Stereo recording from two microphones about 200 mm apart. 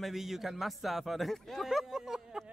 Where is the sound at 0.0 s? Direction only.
Centre (ahead or behind).